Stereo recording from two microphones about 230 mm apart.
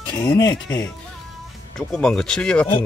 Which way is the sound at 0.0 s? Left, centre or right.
Centre.